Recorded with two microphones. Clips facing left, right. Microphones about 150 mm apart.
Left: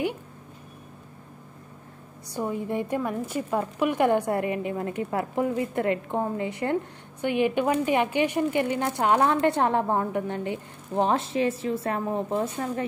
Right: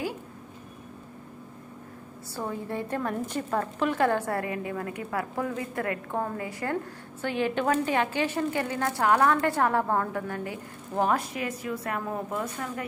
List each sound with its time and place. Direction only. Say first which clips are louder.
2.3 s a woman's voice: left 4 dB; 15° left (ahead or behind)